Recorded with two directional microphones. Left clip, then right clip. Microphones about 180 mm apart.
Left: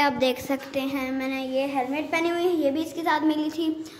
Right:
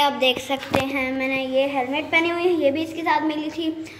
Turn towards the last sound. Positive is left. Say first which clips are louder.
# right 1 dB
turn(degrees=15)  # may be behind; listen again after turning